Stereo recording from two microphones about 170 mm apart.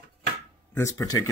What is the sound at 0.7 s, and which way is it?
Speech, 15° left (ahead or behind).